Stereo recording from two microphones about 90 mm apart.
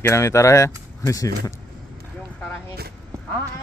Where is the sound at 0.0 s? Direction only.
35° left (ahead or behind).